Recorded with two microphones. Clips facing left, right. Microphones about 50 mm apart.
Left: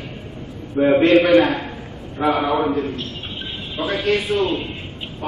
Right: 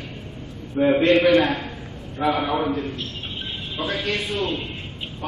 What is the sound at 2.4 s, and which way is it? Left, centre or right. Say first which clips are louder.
Speech: left 4 dB; centre.